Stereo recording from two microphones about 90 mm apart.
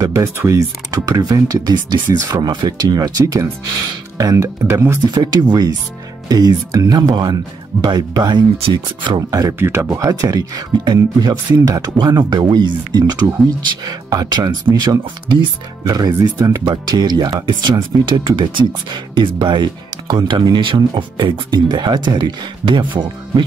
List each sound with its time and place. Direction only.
0.0 s speech: 35° right (ahead or behind)
5.0 s speech: 50° right (ahead or behind)
9.3 s speech: 40° right (ahead or behind)
9.6 s speech: 30° right (ahead or behind); by 15.4 s 55° right (ahead or behind)
15.9 s speech: 45° right (ahead or behind)
16.6 s speech: 55° right (ahead or behind)